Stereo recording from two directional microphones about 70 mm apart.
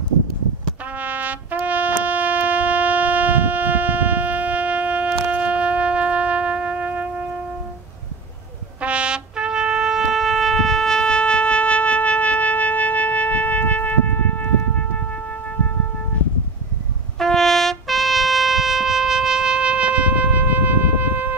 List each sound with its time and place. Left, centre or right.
0.9 s brass instrument: right
1.6 s shofar: right
8.8 s trumpet: centre; by 13.9 s left
17.2 s trumpet: centre; by 21.4 s right